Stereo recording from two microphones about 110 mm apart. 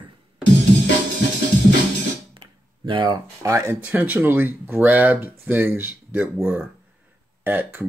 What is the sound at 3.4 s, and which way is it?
Speech, 30° right (ahead or behind).